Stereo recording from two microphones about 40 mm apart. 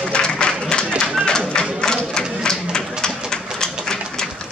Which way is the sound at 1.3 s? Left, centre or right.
Left.